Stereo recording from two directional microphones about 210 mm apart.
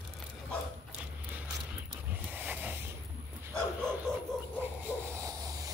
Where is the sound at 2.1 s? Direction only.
5° right (ahead or behind).